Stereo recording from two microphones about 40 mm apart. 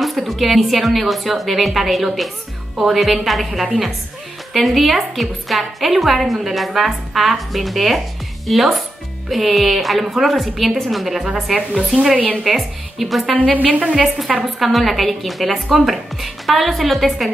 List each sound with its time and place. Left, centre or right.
0.0 s a woman's voice: centre
13.6 s a woman's voice: right
13.9 s a woman's voice: centre